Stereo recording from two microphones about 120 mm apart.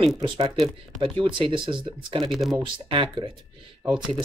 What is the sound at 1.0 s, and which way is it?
Speech, 45° right (ahead or behind).